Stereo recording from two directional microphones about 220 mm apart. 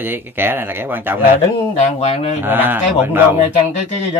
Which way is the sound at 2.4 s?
10° right (ahead or behind).